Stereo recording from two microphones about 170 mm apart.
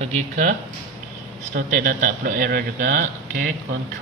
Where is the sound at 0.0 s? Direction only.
45° right (ahead or behind).